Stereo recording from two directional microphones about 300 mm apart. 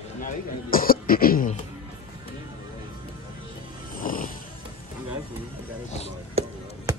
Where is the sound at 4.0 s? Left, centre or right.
Left.